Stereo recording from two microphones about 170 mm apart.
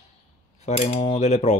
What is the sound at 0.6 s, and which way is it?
Speech, 40° left (ahead or behind).